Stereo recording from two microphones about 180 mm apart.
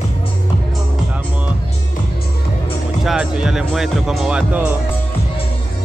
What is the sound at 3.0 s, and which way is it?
Speech, 5° right (ahead or behind).